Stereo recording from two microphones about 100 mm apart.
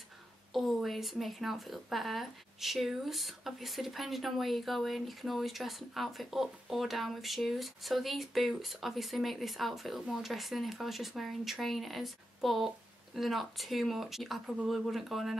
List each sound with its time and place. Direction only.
0.5 s a woman's voice: centre (ahead or behind)